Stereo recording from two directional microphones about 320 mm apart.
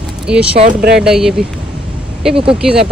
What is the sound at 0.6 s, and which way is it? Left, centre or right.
Speech, right.